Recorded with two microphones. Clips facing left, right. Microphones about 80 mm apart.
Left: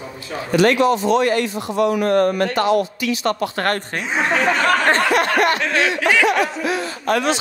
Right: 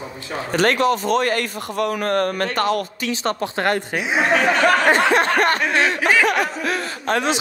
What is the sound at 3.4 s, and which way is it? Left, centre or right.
Speech, centre.